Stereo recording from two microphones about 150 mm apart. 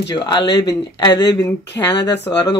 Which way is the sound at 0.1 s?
30° left (ahead or behind).